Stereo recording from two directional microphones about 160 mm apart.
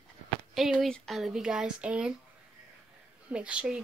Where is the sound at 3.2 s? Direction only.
5° right (ahead or behind).